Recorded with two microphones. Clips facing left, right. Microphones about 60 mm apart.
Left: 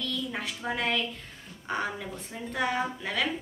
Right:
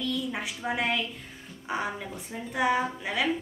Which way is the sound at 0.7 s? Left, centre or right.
Centre.